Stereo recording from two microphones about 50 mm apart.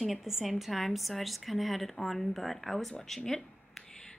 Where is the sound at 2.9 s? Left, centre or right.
Centre.